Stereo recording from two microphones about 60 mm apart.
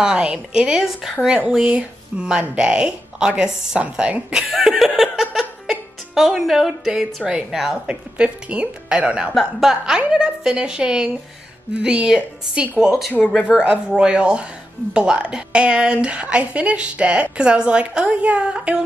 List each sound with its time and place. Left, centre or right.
0.0 s speech: centre
9.3 s speech: centre
9.7 s speech: centre